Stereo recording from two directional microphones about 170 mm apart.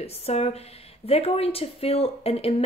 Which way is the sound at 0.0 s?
40° left (ahead or behind).